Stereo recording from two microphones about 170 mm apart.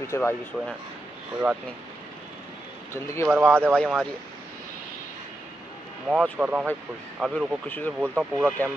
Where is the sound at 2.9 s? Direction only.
15° left (ahead or behind).